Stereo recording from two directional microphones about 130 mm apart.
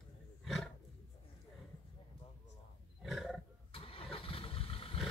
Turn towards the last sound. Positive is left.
turn(degrees=45)  # may be behind; listen again after turning